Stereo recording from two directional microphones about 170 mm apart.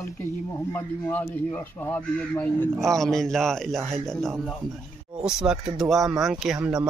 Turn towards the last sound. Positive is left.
turn(degrees=0)  # may be behind; listen again after turning